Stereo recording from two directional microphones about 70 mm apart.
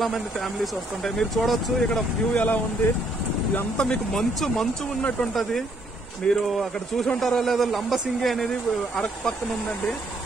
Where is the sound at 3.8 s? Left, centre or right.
Centre.